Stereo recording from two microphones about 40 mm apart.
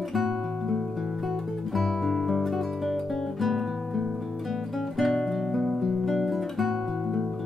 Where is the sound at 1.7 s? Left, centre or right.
Centre.